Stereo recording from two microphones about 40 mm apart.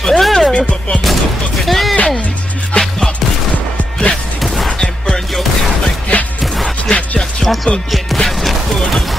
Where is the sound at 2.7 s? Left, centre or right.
Left.